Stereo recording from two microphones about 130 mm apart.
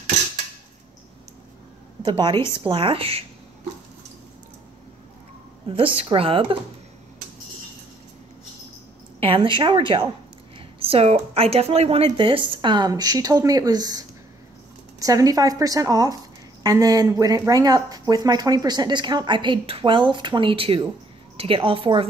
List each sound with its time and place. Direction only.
2.0 s speech: 35° right (ahead or behind)
5.9 s speech: 45° right (ahead or behind)
9.2 s a woman's voice: 40° right (ahead or behind)